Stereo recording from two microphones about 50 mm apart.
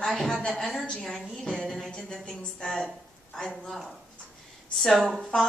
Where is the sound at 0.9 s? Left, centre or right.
Centre.